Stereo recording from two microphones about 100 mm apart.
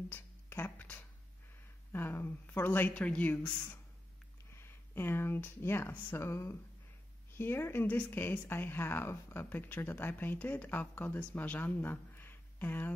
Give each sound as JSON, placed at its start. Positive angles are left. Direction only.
{"t": 0.1, "sound": "music", "side_deg": 25}
{"t": 1.9, "sound": "speech", "side_deg": 20}